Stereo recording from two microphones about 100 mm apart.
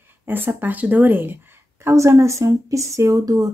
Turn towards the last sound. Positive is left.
turn(degrees=-35)  # may be behind; listen again after turning